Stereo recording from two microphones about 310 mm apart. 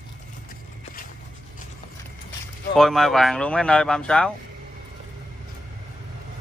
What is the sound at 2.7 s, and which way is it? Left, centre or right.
Speech, centre.